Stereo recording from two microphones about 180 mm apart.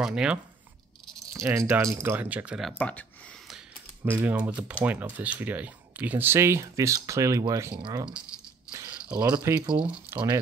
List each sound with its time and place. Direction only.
0.0 s speech: 5° right (ahead or behind)
1.3 s speech: 15° right (ahead or behind)
2.8 s speech: 10° left (ahead or behind)
3.4 s typing: 5° right (ahead or behind)
4.8 s speech: 10° right (ahead or behind); by 8.1 s 25° right (ahead or behind)
9.3 s speech: 15° right (ahead or behind)